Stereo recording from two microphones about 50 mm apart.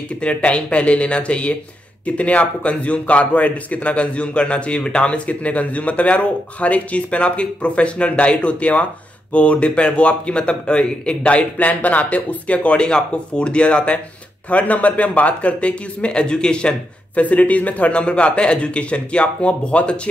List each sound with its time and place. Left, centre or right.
0.1 s a man's voice: left